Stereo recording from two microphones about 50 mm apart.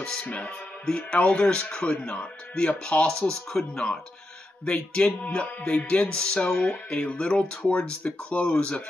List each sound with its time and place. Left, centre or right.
0.0 s music: centre
0.3 s speech: left